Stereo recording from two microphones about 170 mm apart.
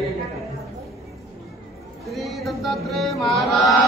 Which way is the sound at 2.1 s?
Centre (ahead or behind).